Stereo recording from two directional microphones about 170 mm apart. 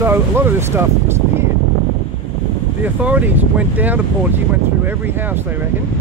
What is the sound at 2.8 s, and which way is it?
Speech, 10° right (ahead or behind).